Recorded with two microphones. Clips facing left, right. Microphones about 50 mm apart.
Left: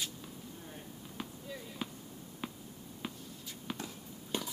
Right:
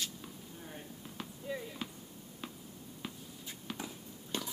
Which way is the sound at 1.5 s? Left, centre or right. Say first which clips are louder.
Right 10 dB; centre.